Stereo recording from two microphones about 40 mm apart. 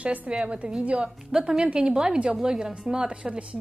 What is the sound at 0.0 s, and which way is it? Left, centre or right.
Speech, right.